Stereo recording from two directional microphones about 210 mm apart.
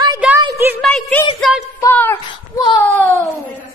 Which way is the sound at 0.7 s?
5° left (ahead or behind).